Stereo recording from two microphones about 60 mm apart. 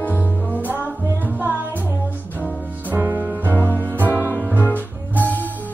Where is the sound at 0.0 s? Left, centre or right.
Left.